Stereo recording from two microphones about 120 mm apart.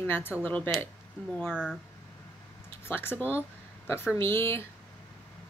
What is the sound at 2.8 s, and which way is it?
A woman's voice, 15° left (ahead or behind).